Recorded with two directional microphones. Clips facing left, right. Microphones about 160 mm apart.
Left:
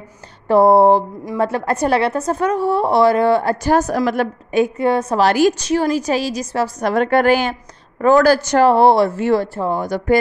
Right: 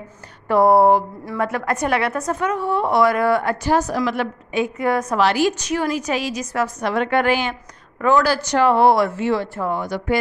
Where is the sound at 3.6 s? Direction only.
45° left (ahead or behind).